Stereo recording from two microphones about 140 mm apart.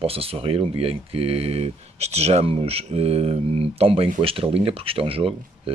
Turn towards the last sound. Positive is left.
turn(degrees=-40)  # may be behind; listen again after turning